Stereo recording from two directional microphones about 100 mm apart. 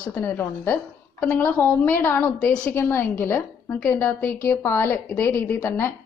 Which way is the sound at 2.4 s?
10° left (ahead or behind).